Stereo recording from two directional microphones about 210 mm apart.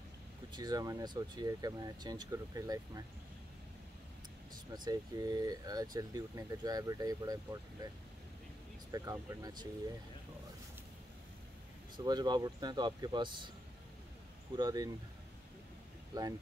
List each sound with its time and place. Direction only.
0.5 s speech: 20° right (ahead or behind)
4.7 s speech: 20° right (ahead or behind)
8.9 s speech: 15° right (ahead or behind)
12.0 s speech: 20° right (ahead or behind)
14.6 s speech: 15° right (ahead or behind)
16.1 s speech: 20° right (ahead or behind)